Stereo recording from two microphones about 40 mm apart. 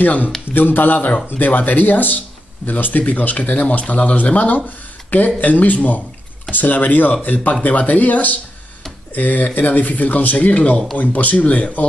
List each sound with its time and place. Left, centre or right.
0.0 s speech: left